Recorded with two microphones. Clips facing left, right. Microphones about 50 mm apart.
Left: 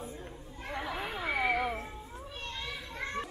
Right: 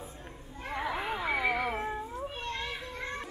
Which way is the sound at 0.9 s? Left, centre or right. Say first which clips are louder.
Even; centre.